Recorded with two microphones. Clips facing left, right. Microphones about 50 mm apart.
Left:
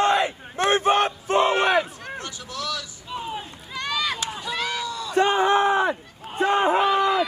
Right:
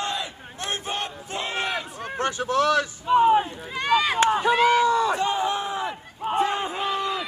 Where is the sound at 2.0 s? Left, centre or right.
Right.